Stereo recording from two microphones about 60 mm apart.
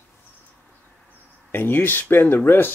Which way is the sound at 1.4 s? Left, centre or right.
Left.